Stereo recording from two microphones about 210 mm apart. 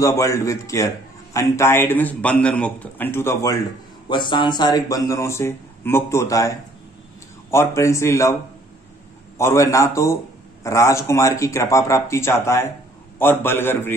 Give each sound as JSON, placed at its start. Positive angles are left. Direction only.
{"t": 0.0, "sound": "a man's voice", "side_deg": 15}
{"t": 9.4, "sound": "a man's voice", "side_deg": 15}